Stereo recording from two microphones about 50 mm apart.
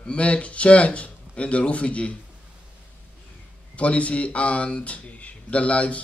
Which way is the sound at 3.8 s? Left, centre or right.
Left.